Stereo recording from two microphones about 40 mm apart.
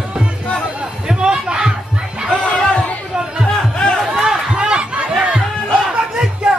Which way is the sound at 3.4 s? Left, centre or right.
Centre.